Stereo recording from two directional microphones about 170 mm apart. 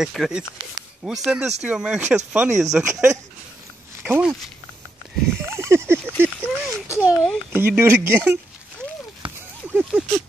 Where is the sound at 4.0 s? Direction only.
5° right (ahead or behind).